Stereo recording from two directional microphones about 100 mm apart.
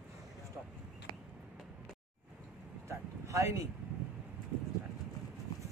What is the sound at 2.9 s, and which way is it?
Vehicle, 30° right (ahead or behind).